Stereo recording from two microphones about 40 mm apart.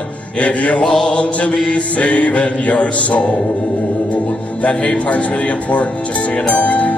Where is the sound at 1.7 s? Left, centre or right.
Left.